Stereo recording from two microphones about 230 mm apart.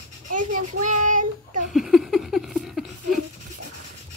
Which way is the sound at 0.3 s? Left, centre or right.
Right.